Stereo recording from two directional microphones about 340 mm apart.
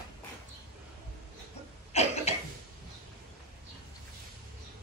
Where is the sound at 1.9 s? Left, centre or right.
Centre.